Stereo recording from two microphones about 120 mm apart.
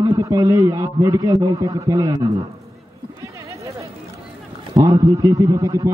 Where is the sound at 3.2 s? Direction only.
25° right (ahead or behind).